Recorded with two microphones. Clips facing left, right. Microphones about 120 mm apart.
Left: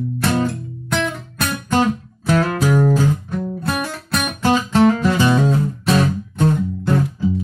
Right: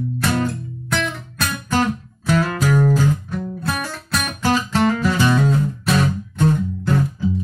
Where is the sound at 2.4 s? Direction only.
25° left (ahead or behind).